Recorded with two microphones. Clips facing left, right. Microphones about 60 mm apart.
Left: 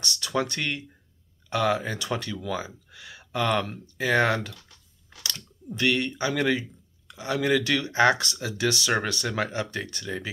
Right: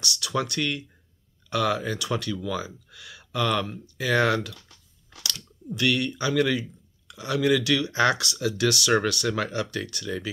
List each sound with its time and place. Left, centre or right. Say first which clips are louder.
0.0 s speech: even; left
3.6 s speech: left 1 dB; left